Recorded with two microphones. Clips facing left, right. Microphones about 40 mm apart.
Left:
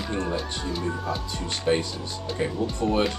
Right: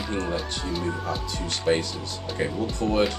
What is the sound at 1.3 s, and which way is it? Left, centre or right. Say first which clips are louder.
Speech: right 1 dB; centre.